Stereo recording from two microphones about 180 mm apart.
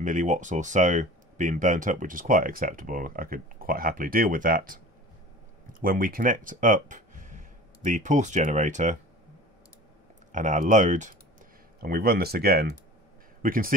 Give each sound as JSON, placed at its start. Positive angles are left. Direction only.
{"t": 0.0, "sound": "speech", "side_deg": -45}
{"t": 10.3, "sound": "speech", "side_deg": -45}
{"t": 11.8, "sound": "speech", "side_deg": -55}